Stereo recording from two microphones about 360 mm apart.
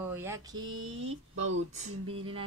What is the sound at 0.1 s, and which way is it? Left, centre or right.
Mantra, centre.